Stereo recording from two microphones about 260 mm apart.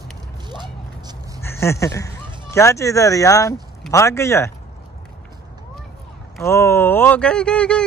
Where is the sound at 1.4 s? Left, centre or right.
Centre.